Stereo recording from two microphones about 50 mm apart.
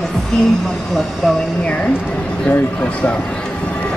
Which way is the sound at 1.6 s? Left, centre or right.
Left.